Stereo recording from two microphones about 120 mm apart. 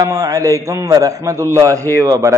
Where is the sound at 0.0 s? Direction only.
30° right (ahead or behind).